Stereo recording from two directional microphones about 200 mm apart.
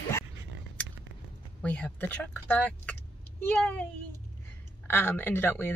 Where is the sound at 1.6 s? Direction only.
5° left (ahead or behind).